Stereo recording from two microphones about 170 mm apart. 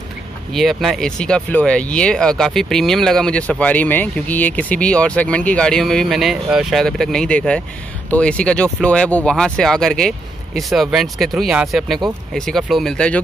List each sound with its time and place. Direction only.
0.5 s speech: centre (ahead or behind)